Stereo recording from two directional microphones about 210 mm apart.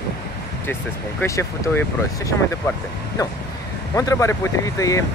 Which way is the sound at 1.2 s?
10° left (ahead or behind).